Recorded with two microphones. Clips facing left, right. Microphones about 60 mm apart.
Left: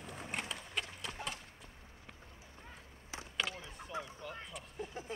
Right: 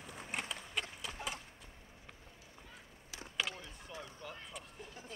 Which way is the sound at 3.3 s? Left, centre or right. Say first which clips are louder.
Even; centre.